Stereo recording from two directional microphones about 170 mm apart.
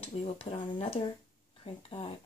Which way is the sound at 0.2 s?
35° left (ahead or behind).